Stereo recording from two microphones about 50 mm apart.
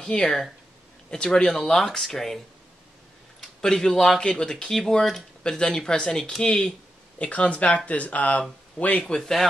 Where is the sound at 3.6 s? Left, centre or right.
Centre; by 8.4 s left.